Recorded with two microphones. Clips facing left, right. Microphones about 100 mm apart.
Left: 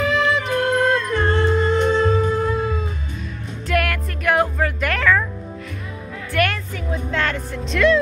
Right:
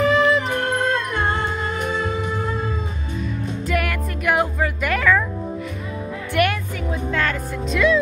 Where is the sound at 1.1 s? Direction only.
15° right (ahead or behind).